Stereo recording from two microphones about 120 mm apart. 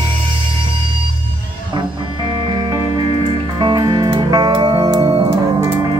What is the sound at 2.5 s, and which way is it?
Music, 40° right (ahead or behind).